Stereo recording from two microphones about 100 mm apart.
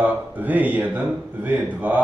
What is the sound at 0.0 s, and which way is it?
A man's voice, 15° right (ahead or behind).